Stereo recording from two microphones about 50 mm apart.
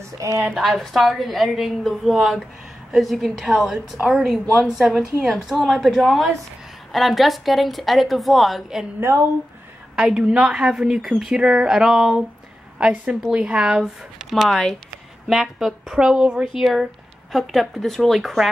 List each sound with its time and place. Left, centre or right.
0.2 s a woman's voice: right
0.6 s a woman's voice: centre
10.1 s a woman's voice: right; by 12.2 s centre
12.7 s a woman's voice: right
14.1 s a woman's voice: centre
17.3 s a woman's voice: centre